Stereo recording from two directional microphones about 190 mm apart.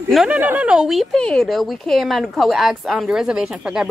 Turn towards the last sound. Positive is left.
turn(degrees=-5)  # may be behind; listen again after turning